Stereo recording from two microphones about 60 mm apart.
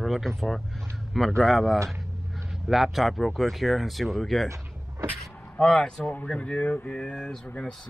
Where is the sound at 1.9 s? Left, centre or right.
Centre.